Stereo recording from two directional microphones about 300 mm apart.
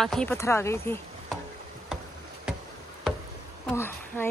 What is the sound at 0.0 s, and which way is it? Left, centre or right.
Speech, centre.